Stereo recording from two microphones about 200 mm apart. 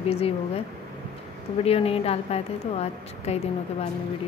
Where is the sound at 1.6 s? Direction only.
30° left (ahead or behind).